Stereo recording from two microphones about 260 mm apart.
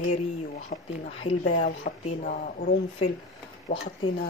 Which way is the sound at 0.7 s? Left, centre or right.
Left.